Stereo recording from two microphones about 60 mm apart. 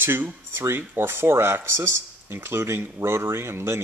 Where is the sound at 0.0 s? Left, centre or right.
Right.